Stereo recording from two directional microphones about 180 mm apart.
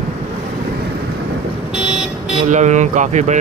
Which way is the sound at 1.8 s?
5° right (ahead or behind).